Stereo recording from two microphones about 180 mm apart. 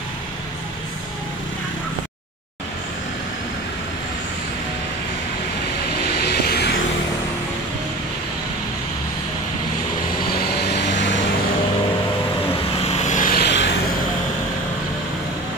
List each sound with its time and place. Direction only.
6.1 s music: 60° left (ahead or behind)
10.3 s vehicle: 60° left (ahead or behind)
12.8 s vehicle: 40° left (ahead or behind); by 13.7 s 70° left (ahead or behind)